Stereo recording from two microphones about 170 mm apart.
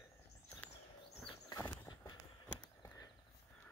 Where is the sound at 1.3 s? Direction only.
25° left (ahead or behind).